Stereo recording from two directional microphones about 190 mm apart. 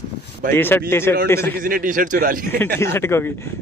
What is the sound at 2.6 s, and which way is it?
Speech, 15° left (ahead or behind).